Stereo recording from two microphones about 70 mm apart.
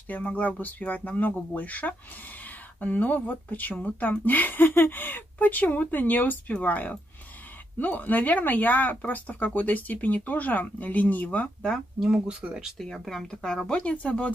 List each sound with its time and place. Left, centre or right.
0.1 s speech: left
12.0 s speech: centre
12.7 s speech: centre